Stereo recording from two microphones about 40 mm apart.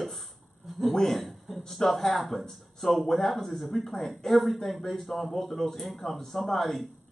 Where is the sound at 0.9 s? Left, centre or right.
Centre.